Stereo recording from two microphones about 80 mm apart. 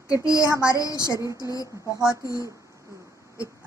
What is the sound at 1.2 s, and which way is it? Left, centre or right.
Speech, right.